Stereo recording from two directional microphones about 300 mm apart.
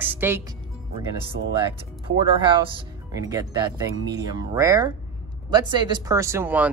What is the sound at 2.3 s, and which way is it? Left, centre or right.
Speech, centre.